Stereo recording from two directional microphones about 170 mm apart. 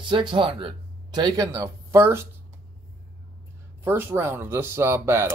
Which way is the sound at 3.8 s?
15° right (ahead or behind).